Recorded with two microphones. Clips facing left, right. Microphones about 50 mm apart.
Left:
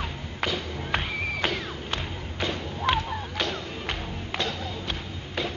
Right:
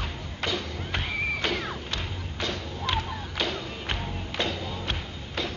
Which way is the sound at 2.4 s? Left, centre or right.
Left.